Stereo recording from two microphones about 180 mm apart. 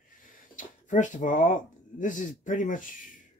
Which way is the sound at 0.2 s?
50° left (ahead or behind).